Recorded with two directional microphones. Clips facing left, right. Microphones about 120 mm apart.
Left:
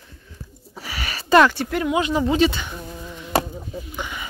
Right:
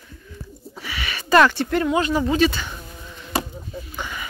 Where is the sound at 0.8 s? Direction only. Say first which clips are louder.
Even; 35° left (ahead or behind).